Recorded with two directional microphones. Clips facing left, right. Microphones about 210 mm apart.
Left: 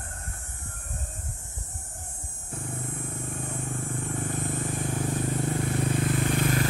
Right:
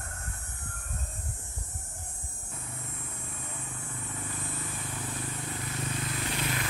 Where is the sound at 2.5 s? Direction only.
50° left (ahead or behind).